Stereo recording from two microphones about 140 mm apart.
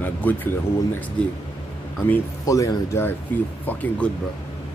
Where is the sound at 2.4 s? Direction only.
25° left (ahead or behind).